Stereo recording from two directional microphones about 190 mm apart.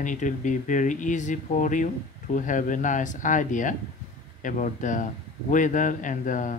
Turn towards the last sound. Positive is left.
turn(degrees=45)  # may be behind; listen again after turning